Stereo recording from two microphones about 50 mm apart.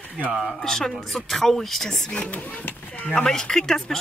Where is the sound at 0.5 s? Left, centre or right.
Centre.